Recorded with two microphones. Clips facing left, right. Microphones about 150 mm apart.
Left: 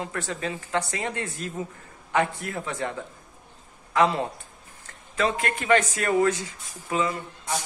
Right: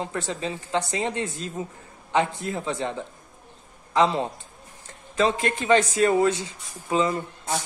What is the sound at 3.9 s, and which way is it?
A man's voice, 25° right (ahead or behind).